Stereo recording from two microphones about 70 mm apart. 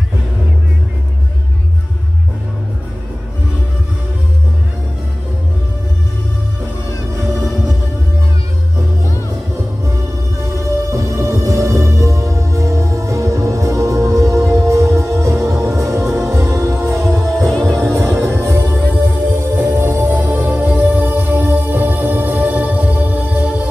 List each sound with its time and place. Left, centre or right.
9.8 s music: right
17.5 s music: centre
17.9 s music: right
19.5 s music: right